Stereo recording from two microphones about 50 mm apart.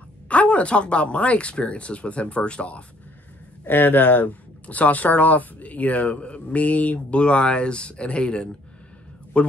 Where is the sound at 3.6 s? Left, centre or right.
Left.